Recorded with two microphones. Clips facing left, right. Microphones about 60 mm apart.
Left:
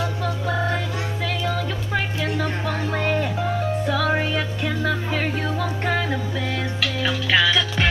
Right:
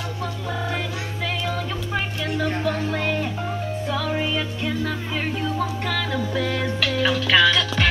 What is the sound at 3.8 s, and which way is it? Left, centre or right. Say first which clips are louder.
Music: left 2 dB; left.